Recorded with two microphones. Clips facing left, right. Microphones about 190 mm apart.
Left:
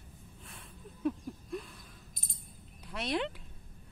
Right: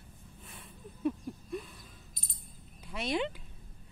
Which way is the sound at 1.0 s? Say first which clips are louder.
Right 1 dB; centre (ahead or behind).